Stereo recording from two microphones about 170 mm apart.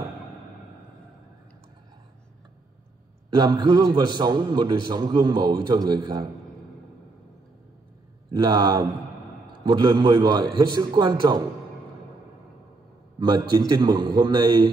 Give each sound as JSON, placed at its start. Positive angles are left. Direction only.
{"t": 3.3, "sound": "a man's voice", "side_deg": -25}
{"t": 8.3, "sound": "a man's voice", "side_deg": -25}
{"t": 13.2, "sound": "a man's voice", "side_deg": -25}